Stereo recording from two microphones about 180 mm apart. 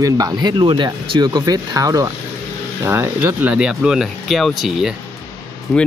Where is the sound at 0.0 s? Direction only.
20° right (ahead or behind).